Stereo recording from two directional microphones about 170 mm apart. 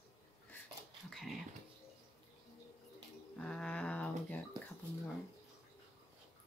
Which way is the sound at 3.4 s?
5° left (ahead or behind).